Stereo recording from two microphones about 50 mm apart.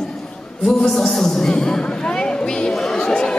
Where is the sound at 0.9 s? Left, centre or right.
Centre.